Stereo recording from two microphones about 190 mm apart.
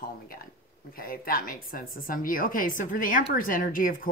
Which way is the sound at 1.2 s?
50° left (ahead or behind).